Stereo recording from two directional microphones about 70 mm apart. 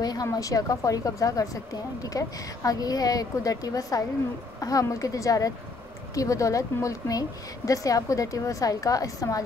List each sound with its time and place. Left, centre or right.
0.0 s a woman's voice: left